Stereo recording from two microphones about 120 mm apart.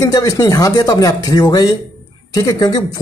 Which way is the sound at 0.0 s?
30° left (ahead or behind).